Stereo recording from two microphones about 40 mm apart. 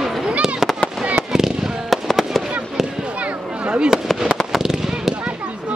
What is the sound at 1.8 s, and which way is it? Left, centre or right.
Fireworks, centre.